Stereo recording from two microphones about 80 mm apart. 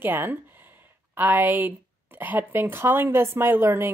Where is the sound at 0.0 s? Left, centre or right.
Right.